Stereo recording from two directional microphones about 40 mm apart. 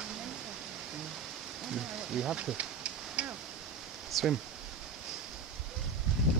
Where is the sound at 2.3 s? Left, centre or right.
Right.